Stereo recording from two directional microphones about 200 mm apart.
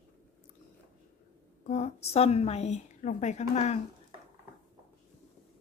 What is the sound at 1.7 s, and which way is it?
A woman's voice, 30° left (ahead or behind).